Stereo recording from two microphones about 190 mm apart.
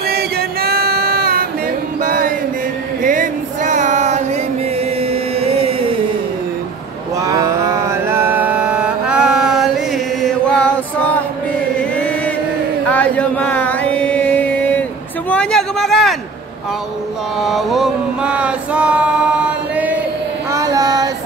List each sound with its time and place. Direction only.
0.1 s music: 55° right (ahead or behind)
2.0 s chant: 45° right (ahead or behind)
3.0 s a sound: 45° right (ahead or behind)
5.1 s music: 30° right (ahead or behind)
7.2 s mantra: 15° right (ahead or behind)
10.2 s chant: 5° left (ahead or behind)
12.8 s chant: 10° left (ahead or behind)
17.4 s a sound: centre (ahead or behind)
19.4 s chant: 10° right (ahead or behind)
20.5 s child singing: 20° right (ahead or behind)